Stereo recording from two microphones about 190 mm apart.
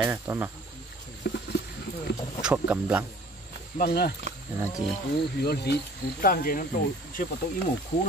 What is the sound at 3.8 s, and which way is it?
Speech, 55° left (ahead or behind).